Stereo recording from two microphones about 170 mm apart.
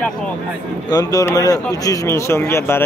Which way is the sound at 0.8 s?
20° left (ahead or behind).